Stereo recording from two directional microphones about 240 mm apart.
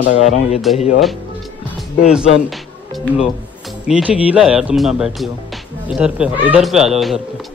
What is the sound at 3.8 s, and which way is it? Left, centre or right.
Speech, centre.